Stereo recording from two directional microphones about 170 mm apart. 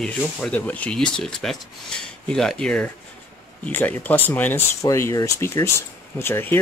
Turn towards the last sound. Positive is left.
turn(degrees=15)  # may be behind; listen again after turning